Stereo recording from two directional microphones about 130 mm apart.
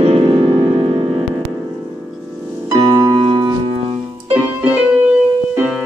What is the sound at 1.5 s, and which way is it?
Music, 20° right (ahead or behind).